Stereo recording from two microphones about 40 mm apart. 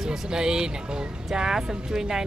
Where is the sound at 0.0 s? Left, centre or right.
Centre.